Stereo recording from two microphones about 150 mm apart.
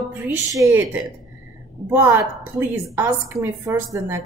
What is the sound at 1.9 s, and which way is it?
A woman's voice, 15° right (ahead or behind).